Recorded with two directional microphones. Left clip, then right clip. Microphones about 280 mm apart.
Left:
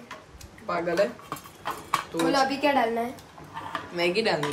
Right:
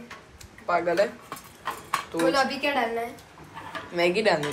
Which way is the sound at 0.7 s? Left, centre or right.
Centre.